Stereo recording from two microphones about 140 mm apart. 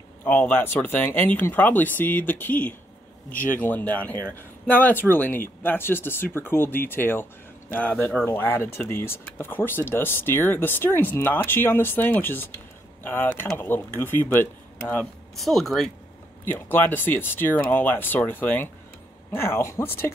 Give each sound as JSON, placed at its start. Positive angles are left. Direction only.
{"t": 0.2, "sound": "speech", "side_deg": 15}
{"t": 15.3, "sound": "speech", "side_deg": 0}
{"t": 16.4, "sound": "speech", "side_deg": 15}